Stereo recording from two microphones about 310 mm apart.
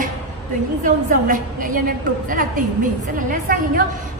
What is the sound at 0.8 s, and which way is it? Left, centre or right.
A woman's voice, right.